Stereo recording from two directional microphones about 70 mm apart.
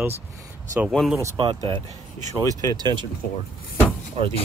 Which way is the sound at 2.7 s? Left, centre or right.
Right.